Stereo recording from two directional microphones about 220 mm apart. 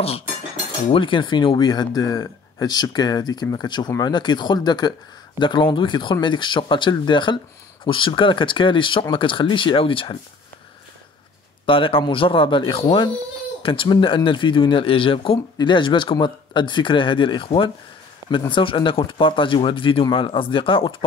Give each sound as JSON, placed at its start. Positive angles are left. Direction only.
{"t": 0.9, "sound": "speech", "side_deg": 20}
{"t": 11.6, "sound": "speech", "side_deg": 25}